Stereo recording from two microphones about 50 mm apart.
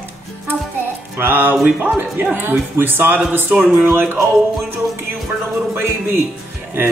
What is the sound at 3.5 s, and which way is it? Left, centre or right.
Speech, right.